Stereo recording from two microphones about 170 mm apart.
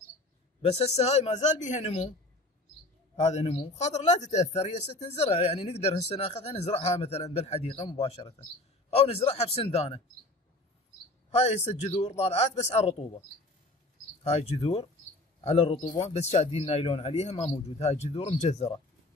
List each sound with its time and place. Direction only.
0.6 s a man's voice: 40° left (ahead or behind)
3.2 s a man's voice: 40° left (ahead or behind)
11.2 s a man's voice: 40° left (ahead or behind)
14.2 s a man's voice: 40° left (ahead or behind)